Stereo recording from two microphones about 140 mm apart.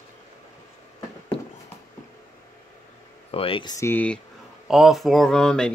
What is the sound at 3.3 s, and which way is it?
Speech, 40° left (ahead or behind).